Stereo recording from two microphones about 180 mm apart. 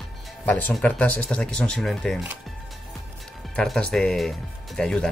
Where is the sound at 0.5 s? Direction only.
10° left (ahead or behind).